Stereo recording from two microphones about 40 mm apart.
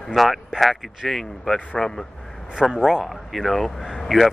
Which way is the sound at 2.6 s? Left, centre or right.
Centre.